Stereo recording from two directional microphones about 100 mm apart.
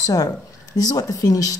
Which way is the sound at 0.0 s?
40° left (ahead or behind).